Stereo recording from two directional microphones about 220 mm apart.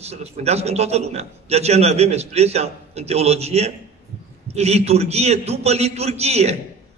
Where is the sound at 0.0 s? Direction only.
30° right (ahead or behind).